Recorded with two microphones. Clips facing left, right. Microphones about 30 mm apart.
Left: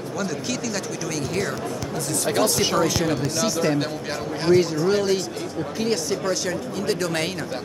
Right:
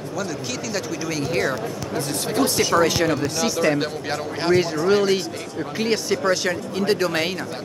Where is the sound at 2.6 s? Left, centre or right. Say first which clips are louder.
Right 2 dB; right.